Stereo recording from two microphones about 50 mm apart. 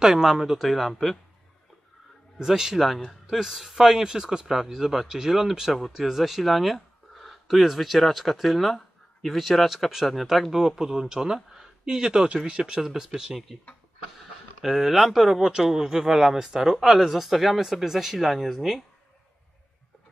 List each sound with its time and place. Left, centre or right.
0.0 s speech: centre
2.3 s speech: centre
14.6 s speech: centre